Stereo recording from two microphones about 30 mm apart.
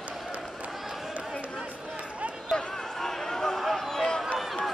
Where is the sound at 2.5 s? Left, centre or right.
Centre.